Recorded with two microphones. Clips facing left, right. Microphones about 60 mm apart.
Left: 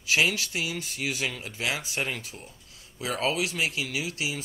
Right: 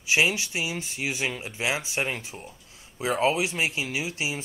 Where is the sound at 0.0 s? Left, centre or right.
Centre.